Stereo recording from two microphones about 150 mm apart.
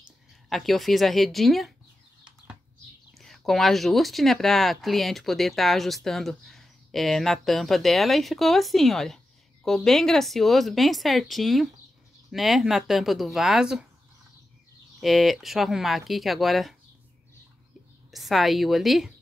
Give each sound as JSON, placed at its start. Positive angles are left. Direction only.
{"t": 0.5, "sound": "speech", "side_deg": 0}
{"t": 3.2, "sound": "speech", "side_deg": 0}
{"t": 15.0, "sound": "speech", "side_deg": 0}
{"t": 18.1, "sound": "speech", "side_deg": 0}